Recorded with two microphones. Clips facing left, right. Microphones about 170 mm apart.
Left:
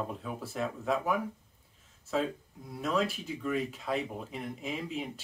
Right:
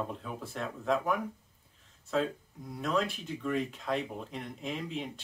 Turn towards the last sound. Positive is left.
turn(degrees=5)  # may be behind; listen again after turning